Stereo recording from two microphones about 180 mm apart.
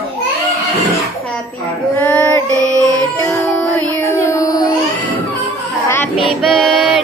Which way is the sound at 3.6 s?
Centre (ahead or behind).